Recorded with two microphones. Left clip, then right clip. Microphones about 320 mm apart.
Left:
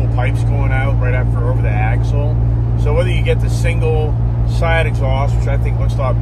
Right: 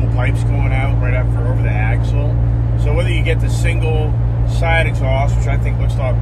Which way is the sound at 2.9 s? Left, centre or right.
Centre.